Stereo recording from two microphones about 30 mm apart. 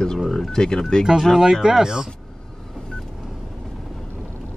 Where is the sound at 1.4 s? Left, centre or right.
Centre.